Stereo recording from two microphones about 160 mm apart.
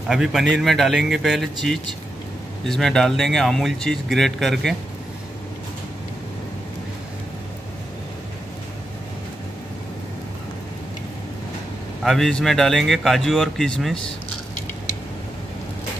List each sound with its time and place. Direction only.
0.1 s speech: 5° right (ahead or behind)
12.0 s speech: centre (ahead or behind)